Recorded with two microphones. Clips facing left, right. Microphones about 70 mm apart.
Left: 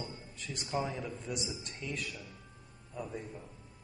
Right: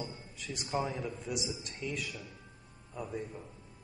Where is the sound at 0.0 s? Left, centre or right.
Centre.